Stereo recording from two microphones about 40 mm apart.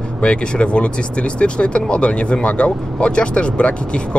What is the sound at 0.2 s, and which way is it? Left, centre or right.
Speech, left.